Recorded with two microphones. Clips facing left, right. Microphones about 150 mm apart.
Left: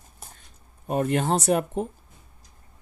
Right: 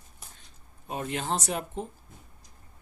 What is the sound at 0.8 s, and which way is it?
Speech, 50° left (ahead or behind).